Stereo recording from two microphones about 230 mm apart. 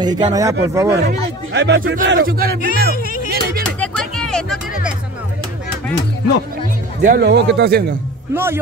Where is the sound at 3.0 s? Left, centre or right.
Left.